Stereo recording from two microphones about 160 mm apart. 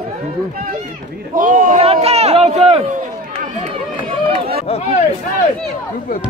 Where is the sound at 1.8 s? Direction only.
40° right (ahead or behind).